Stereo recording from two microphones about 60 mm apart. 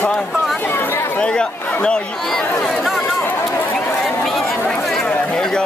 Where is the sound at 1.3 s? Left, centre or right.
Centre.